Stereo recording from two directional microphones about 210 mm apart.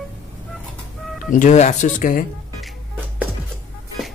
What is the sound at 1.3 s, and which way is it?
Speech, 35° left (ahead or behind).